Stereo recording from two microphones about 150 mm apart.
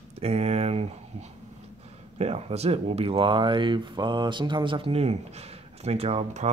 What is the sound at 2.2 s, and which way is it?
Speech, 45° right (ahead or behind).